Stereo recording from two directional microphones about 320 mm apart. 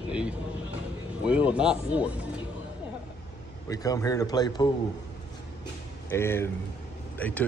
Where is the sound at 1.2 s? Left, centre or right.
Centre.